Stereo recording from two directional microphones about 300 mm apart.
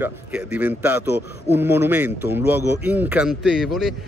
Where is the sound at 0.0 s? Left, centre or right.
Centre.